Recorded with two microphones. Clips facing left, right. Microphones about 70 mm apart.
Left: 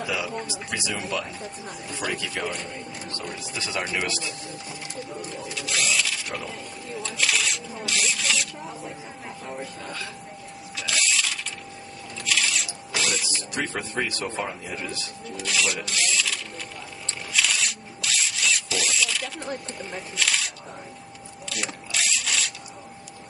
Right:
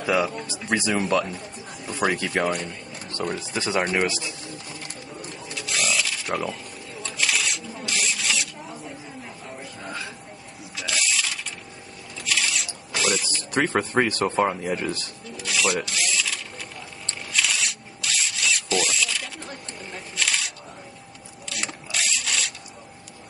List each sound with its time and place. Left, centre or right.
0.0 s speech: right
3.3 s speech: right
3.8 s speech: right
4.1 s speech: centre
5.5 s a sound: centre
7.0 s rub: centre
10.8 s ratchet: centre
12.3 s a sound: centre
13.4 s speech: right
15.3 s speech: centre
17.0 s a sound: centre
19.4 s single-lens reflex camera: centre
21.5 s mechanisms: centre